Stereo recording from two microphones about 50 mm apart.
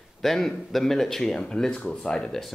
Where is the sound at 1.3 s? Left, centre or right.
Centre.